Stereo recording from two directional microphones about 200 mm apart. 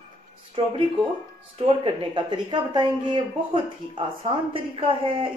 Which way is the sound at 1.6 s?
25° right (ahead or behind).